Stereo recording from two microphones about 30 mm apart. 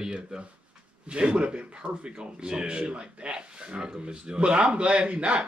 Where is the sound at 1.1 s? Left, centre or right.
Right.